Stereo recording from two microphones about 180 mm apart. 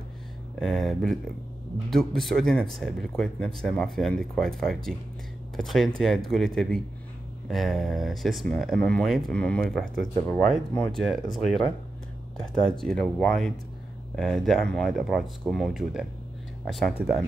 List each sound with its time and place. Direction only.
0.6 s speech: centre (ahead or behind)